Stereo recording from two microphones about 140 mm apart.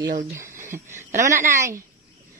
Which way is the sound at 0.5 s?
60° right (ahead or behind).